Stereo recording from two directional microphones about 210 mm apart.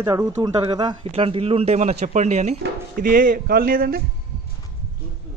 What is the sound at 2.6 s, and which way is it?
Speech, 40° right (ahead or behind).